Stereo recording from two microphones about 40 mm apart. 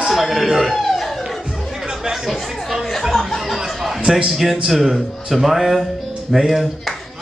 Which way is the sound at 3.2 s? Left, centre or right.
Centre.